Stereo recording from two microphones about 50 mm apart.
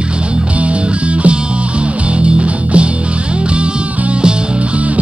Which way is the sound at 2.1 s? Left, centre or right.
Right.